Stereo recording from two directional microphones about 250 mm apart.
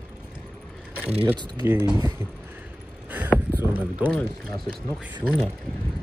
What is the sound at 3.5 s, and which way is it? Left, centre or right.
Boat, centre.